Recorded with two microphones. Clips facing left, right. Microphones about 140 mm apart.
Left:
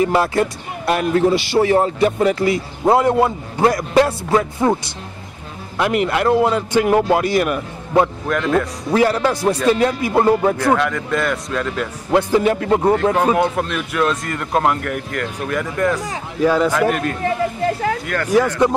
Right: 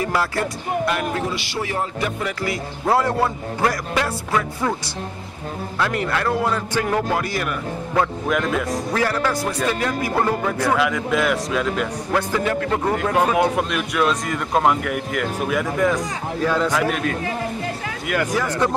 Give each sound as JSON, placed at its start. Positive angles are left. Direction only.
{"t": 0.0, "sound": "a man's voice", "side_deg": 20}
{"t": 5.8, "sound": "a man's voice", "side_deg": 20}
{"t": 8.3, "sound": "speech", "side_deg": -5}
{"t": 8.9, "sound": "a man's voice", "side_deg": 20}
{"t": 10.6, "sound": "speech", "side_deg": 0}
{"t": 12.1, "sound": "a man's voice", "side_deg": 25}
{"t": 13.1, "sound": "speech", "side_deg": 0}
{"t": 16.4, "sound": "speech", "side_deg": 10}
{"t": 18.0, "sound": "speech", "side_deg": -10}
{"t": 18.6, "sound": "speech", "side_deg": 15}